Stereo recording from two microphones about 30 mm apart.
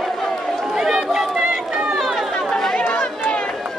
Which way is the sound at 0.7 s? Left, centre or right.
Centre.